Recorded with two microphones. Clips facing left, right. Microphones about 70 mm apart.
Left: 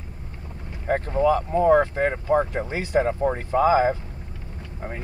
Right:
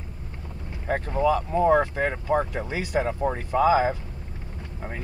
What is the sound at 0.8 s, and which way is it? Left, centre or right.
Speech, left.